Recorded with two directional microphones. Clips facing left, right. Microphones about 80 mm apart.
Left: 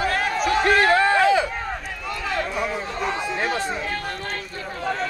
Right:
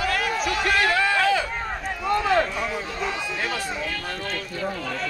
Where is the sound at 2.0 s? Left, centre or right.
Right.